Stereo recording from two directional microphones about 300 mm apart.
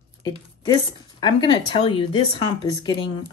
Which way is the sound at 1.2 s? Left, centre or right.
Centre.